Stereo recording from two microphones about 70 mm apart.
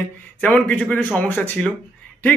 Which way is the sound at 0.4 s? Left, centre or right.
Left.